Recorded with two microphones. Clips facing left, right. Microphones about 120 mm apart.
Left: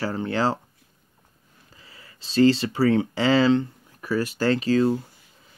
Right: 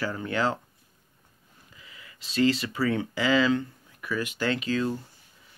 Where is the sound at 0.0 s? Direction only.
30° left (ahead or behind).